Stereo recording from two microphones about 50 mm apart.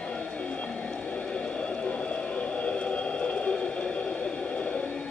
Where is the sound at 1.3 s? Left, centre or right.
Left.